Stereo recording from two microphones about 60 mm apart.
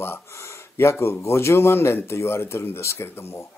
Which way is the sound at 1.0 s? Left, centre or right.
Left.